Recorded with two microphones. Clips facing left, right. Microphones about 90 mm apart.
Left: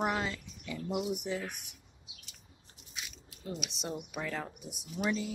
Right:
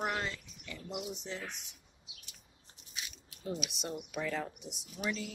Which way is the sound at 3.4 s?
Centre (ahead or behind).